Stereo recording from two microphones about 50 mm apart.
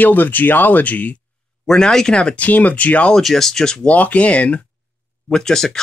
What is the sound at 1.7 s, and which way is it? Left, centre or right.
Speech, centre.